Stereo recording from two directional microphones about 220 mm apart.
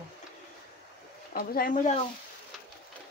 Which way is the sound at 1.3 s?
40° left (ahead or behind).